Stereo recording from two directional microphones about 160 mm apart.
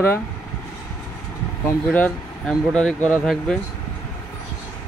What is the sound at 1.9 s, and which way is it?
Speech, 10° left (ahead or behind).